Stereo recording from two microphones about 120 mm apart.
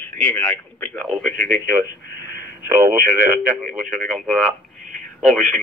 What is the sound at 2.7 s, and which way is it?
Speech, 20° right (ahead or behind).